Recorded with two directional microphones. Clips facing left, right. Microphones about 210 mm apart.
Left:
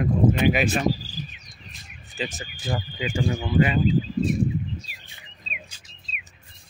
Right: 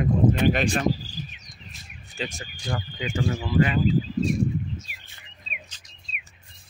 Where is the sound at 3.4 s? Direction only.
20° left (ahead or behind).